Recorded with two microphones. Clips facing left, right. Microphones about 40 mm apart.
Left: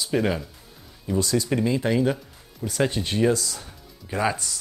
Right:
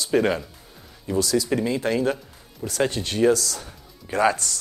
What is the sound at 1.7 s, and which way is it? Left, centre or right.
Speech, centre.